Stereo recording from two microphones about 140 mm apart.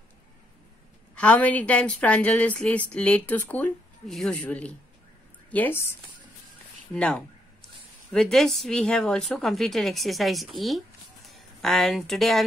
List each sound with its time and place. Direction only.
1.1 s a woman's voice: 10° left (ahead or behind)